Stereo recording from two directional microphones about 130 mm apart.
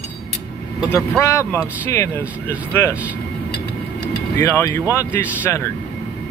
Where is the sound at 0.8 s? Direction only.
20° left (ahead or behind).